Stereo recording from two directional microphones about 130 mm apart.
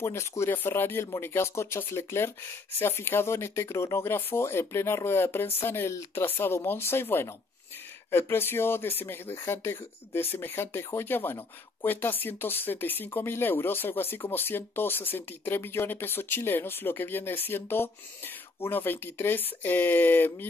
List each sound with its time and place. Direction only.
0.0 s speech: 25° left (ahead or behind)